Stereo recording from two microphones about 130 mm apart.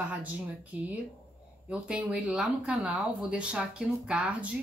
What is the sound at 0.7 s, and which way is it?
A woman's voice, 10° right (ahead or behind).